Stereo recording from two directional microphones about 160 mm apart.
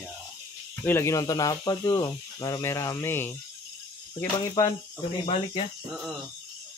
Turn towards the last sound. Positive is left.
turn(degrees=35)  # may be behind; listen again after turning